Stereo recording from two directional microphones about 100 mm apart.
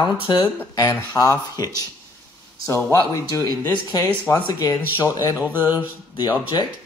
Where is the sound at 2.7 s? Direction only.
25° left (ahead or behind).